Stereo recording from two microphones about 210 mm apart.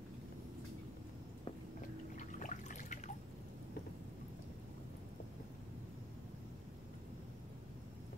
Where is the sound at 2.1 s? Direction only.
35° left (ahead or behind).